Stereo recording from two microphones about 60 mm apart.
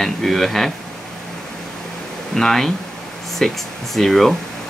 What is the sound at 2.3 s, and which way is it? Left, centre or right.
Speech, centre.